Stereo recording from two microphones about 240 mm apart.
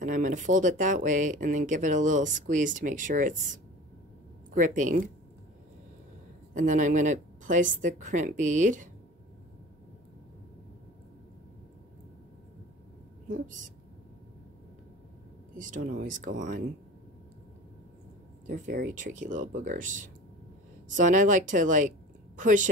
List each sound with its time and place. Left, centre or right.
0.0 s speech: right
4.6 s speech: right
6.5 s speech: right
13.3 s speech: right
15.5 s speech: right
18.5 s speech: right